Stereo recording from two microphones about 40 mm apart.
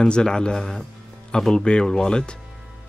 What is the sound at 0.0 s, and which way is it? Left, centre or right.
Speech, centre.